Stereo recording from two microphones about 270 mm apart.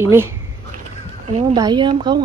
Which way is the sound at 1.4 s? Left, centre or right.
Centre.